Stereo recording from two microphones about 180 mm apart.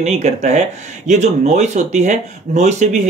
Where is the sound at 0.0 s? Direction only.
40° right (ahead or behind).